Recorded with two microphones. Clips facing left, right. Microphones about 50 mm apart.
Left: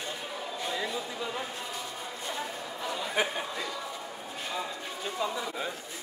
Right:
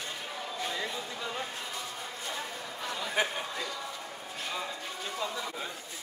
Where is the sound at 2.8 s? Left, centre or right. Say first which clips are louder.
Left 1 dB; centre.